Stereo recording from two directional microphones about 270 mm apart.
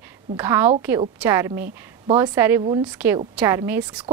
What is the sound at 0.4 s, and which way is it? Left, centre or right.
A woman's voice, centre.